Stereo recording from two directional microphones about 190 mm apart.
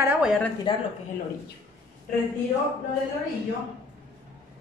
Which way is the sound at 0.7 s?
25° left (ahead or behind).